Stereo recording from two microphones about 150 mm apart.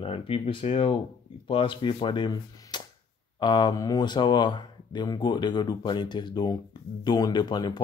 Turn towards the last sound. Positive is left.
turn(degrees=30)  # may be behind; listen again after turning